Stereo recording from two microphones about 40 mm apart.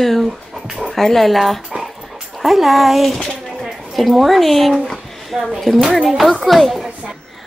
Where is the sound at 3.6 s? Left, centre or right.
Centre.